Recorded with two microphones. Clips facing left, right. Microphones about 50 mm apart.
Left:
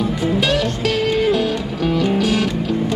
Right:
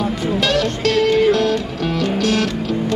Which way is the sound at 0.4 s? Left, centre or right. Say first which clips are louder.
Right 3 dB; centre.